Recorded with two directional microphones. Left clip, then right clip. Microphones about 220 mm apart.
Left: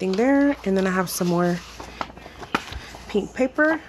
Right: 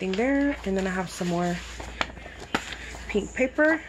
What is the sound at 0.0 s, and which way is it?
Speech, 25° left (ahead or behind).